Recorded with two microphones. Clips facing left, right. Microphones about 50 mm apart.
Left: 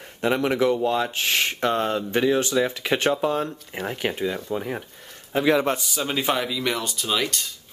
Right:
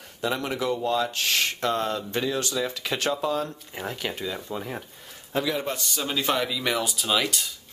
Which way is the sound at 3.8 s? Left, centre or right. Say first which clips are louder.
Left 5 dB; left.